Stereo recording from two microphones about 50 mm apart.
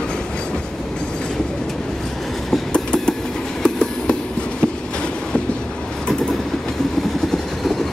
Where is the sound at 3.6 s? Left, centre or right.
Centre.